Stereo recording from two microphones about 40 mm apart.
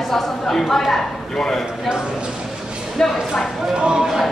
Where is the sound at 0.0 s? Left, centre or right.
Centre.